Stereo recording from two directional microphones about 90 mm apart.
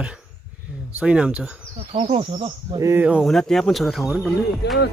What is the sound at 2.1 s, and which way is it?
Speech, 80° right.